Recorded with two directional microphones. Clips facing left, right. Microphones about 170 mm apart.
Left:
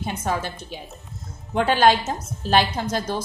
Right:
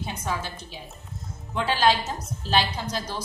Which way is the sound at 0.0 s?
50° left (ahead or behind).